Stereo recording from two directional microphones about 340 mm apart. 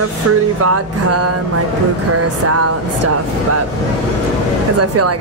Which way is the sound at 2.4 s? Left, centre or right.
Right.